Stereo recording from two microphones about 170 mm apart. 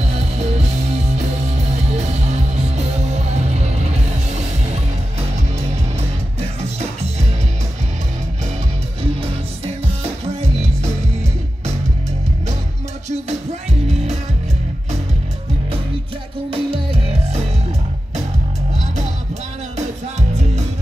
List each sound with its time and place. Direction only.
0.1 s music: 40° right (ahead or behind)
1.9 s music: 40° right (ahead or behind)
6.4 s music: 40° right (ahead or behind)
10.2 s music: 40° right (ahead or behind)
13.8 s music: 40° right (ahead or behind)
16.4 s music: 35° right (ahead or behind)
20.2 s music: 40° right (ahead or behind)